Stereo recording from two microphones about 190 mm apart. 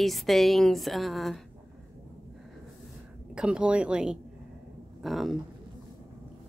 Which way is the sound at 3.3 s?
5° right (ahead or behind).